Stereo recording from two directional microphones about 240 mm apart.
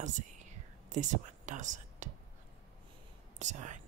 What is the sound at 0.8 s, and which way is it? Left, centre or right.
Speech, right.